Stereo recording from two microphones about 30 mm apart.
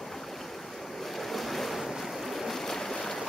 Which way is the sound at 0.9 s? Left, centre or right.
Centre.